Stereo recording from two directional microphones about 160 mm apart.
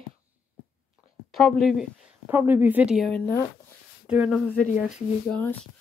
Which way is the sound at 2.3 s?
10° right (ahead or behind).